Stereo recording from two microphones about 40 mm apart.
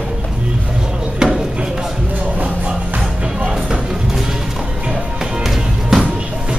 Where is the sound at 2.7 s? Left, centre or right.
Right.